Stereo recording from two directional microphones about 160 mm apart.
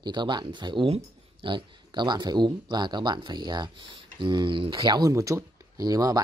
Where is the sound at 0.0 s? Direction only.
30° right (ahead or behind).